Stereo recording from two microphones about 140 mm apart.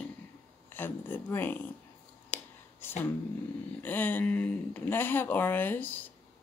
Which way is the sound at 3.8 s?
10° left (ahead or behind).